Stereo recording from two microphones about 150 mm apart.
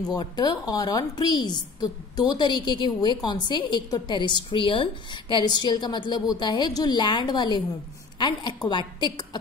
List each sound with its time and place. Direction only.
0.1 s a woman's voice: 30° left (ahead or behind)